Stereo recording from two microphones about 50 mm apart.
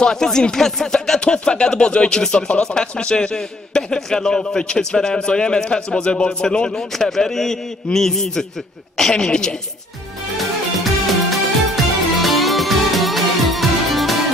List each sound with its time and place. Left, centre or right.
0.0 s a man's voice: centre
10.8 s music: centre